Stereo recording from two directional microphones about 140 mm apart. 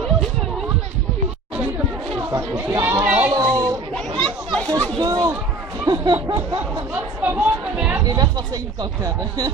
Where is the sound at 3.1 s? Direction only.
10° right (ahead or behind).